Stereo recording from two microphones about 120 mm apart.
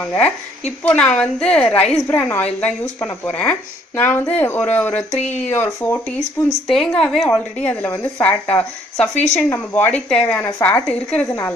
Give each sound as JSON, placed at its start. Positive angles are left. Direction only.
{"t": 0.8, "sound": "speech", "side_deg": 10}
{"t": 5.1, "sound": "speech", "side_deg": 70}
{"t": 5.4, "sound": "speech", "side_deg": 15}
{"t": 6.7, "sound": "a woman's voice", "side_deg": 5}